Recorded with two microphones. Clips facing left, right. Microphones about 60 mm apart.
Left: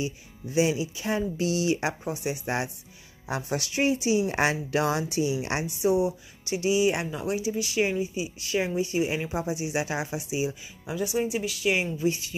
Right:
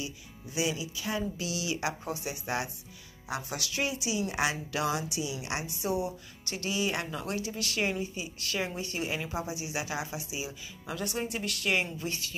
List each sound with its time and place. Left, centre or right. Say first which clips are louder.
0.0 s speech: left 7 dB; left
5.8 s speech: left 9 dB; centre
10.9 s speech: left 7 dB; centre